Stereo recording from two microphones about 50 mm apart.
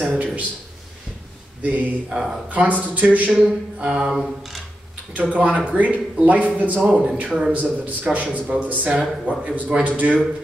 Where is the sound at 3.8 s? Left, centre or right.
Centre.